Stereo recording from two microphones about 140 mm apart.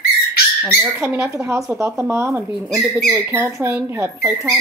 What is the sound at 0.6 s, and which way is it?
Speech, 5° right (ahead or behind).